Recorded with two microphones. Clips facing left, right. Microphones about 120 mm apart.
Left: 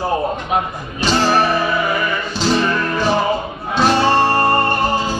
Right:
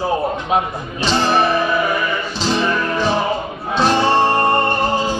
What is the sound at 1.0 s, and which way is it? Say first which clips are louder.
Music: left 1 dB; 5° left (ahead or behind).